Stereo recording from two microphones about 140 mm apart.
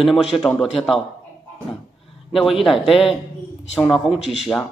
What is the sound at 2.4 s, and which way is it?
Speech, centre (ahead or behind).